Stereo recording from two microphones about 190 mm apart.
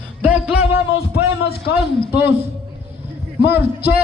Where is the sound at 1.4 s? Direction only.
55° left (ahead or behind).